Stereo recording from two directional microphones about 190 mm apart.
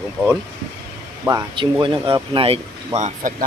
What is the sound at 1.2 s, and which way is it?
Speech, 20° right (ahead or behind).